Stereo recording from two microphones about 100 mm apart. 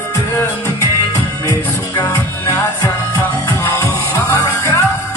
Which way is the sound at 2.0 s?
35° left (ahead or behind).